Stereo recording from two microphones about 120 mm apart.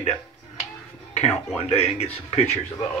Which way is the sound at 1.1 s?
65° left (ahead or behind).